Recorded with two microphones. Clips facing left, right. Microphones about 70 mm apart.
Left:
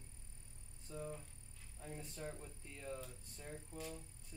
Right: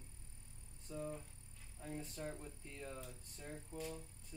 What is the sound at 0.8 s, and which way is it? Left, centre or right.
Speech, centre.